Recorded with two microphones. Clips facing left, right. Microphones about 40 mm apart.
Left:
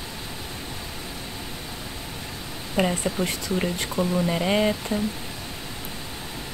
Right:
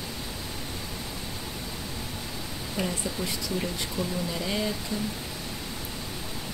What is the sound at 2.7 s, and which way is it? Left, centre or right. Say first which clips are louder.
Speech: left 7 dB; left.